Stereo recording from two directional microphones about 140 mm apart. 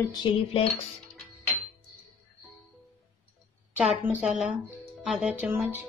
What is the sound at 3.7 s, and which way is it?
A woman's voice, 10° right (ahead or behind).